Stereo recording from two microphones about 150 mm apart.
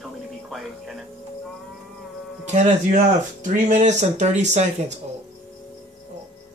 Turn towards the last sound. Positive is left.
turn(degrees=-50)  # may be behind; listen again after turning